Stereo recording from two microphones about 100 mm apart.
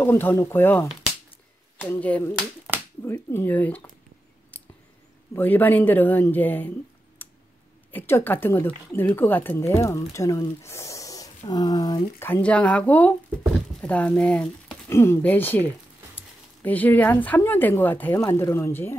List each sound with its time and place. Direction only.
0.0 s speech: 20° left (ahead or behind)
5.3 s speech: 20° left (ahead or behind)
7.2 s a sound: 20° left (ahead or behind)
7.9 s speech: 20° left (ahead or behind); by 12.0 s 40° left (ahead or behind)
12.2 s speech: 15° left (ahead or behind)
14.9 s speech: 25° left (ahead or behind)
18.1 s speech: 30° left (ahead or behind)